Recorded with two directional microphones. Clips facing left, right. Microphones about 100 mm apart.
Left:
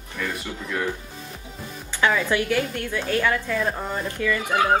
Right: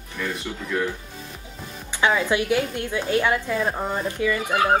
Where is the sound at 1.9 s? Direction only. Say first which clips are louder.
Right 1 dB; 20° right (ahead or behind).